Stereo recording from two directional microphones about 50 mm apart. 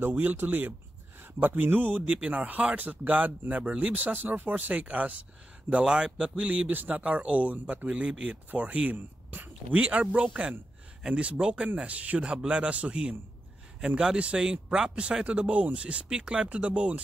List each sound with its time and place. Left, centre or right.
0.1 s speech: right
5.7 s speech: centre
8.9 s a sound: right
9.8 s speech: right